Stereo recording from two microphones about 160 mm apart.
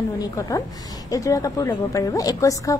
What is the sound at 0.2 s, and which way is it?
A woman's voice, 20° left (ahead or behind).